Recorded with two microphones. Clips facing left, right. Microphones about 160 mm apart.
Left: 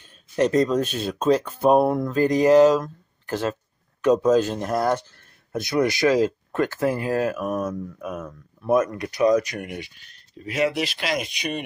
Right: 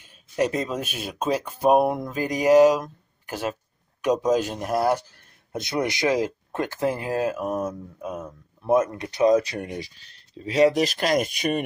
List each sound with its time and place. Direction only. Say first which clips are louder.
0.0 s speech: left 2 dB; 10° right (ahead or behind)
5.5 s speech: left 4 dB; 20° right (ahead or behind); by 11.6 s 50° right (ahead or behind)